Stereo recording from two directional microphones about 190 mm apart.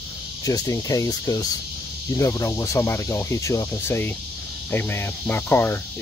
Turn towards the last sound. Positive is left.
turn(degrees=10)  # may be behind; listen again after turning